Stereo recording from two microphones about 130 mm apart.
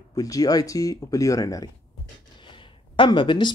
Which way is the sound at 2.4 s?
40° left (ahead or behind).